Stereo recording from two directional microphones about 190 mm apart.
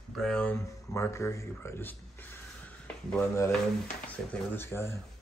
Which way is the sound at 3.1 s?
10° left (ahead or behind).